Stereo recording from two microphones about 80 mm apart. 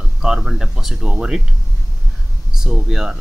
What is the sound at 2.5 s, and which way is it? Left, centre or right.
Speech, centre.